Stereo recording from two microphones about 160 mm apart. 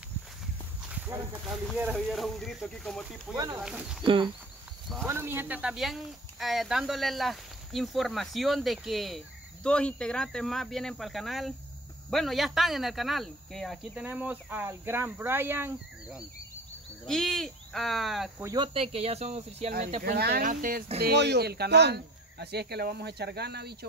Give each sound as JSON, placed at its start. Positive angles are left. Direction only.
{"t": 0.8, "sound": "walk", "side_deg": -10}
{"t": 2.0, "sound": "speech", "side_deg": 0}
{"t": 4.0, "sound": "speech", "side_deg": -35}
{"t": 5.0, "sound": "speech", "side_deg": -15}
{"t": 14.0, "sound": "speech", "side_deg": -10}
{"t": 17.0, "sound": "speech", "side_deg": 0}
{"t": 18.4, "sound": "speech", "side_deg": -25}
{"t": 18.7, "sound": "speech", "side_deg": -35}
{"t": 20.0, "sound": "speech", "side_deg": -80}
{"t": 20.4, "sound": "speech", "side_deg": -60}
{"t": 21.0, "sound": "speech", "side_deg": -90}